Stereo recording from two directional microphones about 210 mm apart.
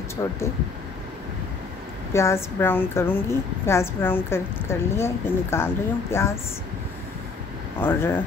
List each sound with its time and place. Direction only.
0.2 s a woman's voice: 15° left (ahead or behind)
2.1 s a woman's voice: 10° left (ahead or behind)
7.8 s a woman's voice: 10° left (ahead or behind)